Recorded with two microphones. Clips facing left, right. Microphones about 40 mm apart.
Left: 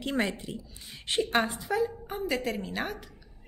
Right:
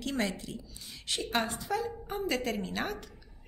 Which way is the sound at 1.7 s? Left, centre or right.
Centre.